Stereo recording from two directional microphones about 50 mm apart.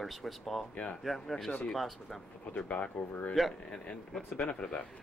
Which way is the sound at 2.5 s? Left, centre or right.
Left.